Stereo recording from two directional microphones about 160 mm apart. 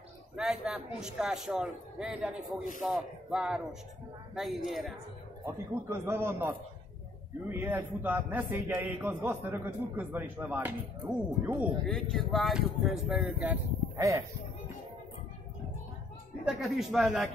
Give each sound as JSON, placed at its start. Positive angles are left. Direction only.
{"t": 0.4, "sound": "speech", "side_deg": 0}
{"t": 5.4, "sound": "a man's voice", "side_deg": -15}
{"t": 11.8, "sound": "speech", "side_deg": 0}
{"t": 16.4, "sound": "speech", "side_deg": 0}